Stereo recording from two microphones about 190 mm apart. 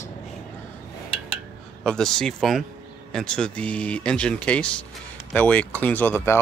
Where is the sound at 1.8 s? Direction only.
5° left (ahead or behind).